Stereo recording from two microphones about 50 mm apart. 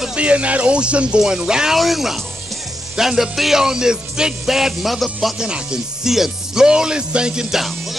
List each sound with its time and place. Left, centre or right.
0.1 s speech: right
1.2 s music: centre
1.8 s speech: centre
3.0 s music: centre
5.4 s music: centre
7.5 s music: centre